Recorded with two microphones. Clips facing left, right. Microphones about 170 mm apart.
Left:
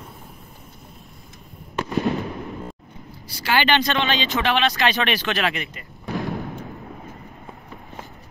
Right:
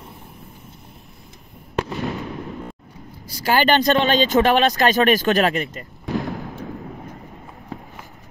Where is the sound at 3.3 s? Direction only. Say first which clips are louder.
Right 3 dB; 45° right (ahead or behind).